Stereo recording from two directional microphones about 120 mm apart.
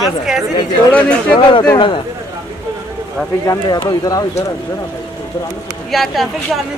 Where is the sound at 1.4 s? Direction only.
40° left (ahead or behind).